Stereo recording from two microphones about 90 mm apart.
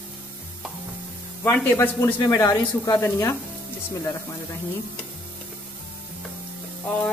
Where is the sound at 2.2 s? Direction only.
40° left (ahead or behind).